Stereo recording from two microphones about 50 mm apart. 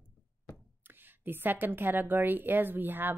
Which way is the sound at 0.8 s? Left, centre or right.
Right.